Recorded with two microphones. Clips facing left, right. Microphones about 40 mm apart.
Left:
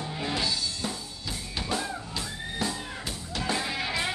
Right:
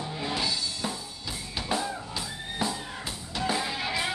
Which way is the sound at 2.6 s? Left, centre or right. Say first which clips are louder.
Right 1 dB; centre.